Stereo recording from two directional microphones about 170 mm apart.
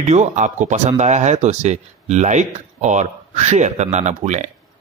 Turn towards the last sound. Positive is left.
turn(degrees=-40)  # may be behind; listen again after turning